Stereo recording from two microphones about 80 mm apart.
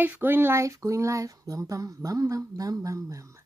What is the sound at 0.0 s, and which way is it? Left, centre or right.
A woman's voice, right.